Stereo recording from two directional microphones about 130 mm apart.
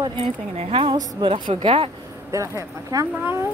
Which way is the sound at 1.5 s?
45° right (ahead or behind).